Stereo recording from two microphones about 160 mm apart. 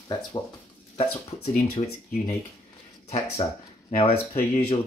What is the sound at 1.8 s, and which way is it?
Speech, 40° left (ahead or behind).